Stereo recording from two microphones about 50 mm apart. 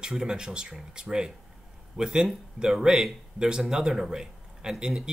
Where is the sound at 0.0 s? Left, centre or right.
Centre.